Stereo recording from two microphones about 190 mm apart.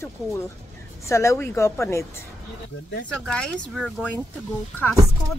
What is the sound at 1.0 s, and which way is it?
A woman's voice, 15° left (ahead or behind).